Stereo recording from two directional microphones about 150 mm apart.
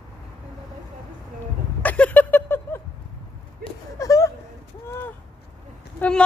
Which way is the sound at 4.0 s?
20° left (ahead or behind).